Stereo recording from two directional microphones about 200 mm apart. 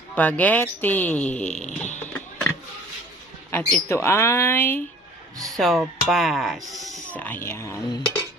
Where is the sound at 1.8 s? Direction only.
35° left (ahead or behind).